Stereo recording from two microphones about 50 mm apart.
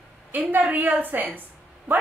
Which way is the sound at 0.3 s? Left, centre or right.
Right.